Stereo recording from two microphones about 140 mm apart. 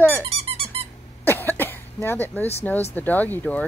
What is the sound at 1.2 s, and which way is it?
Cough, 15° left (ahead or behind).